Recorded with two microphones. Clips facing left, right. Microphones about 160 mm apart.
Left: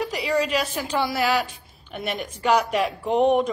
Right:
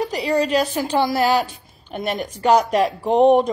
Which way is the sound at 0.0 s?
35° right (ahead or behind).